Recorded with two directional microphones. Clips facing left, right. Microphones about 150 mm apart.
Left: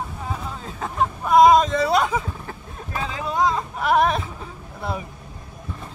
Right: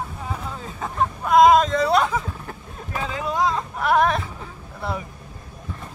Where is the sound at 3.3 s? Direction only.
20° left (ahead or behind).